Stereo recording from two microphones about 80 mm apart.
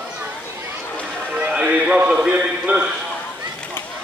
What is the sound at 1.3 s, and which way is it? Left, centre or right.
Music, centre.